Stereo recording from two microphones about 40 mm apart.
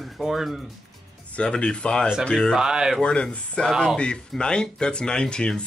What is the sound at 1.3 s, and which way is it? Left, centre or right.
Speech, left.